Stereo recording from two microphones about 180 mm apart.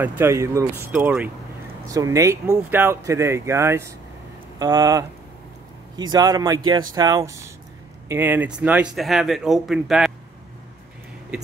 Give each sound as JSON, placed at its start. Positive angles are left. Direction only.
{"t": 0.0, "sound": "speech", "side_deg": -10}